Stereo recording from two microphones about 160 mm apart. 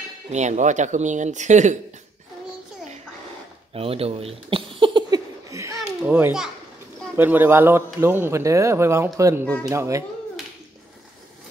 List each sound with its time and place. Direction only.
0.3 s speech: 45° right (ahead or behind)
3.7 s a sound: 35° right (ahead or behind); by 5.8 s 20° right (ahead or behind)
6.0 s speech: 10° right (ahead or behind)